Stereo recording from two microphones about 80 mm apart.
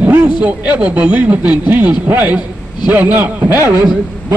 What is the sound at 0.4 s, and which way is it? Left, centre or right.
Speech, centre.